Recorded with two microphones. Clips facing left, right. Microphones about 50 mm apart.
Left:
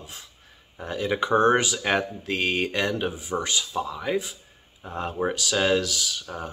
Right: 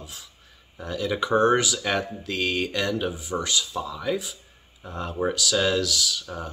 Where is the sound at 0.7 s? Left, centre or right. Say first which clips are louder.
Left 1 dB; left.